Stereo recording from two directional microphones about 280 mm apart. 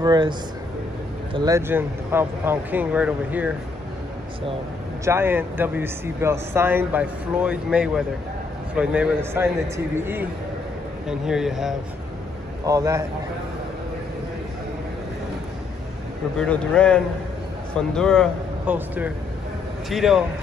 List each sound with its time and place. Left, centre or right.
0.0 s speech: centre
5.0 s speech: centre
12.6 s speech: centre
16.3 s speech: centre